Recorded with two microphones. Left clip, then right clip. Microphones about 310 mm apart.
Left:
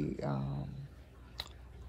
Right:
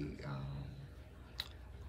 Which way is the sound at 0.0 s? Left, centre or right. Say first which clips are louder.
Left 9 dB; centre.